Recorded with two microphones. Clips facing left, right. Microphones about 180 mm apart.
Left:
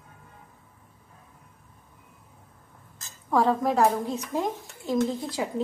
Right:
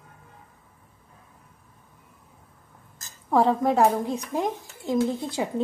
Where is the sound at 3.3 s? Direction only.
20° right (ahead or behind).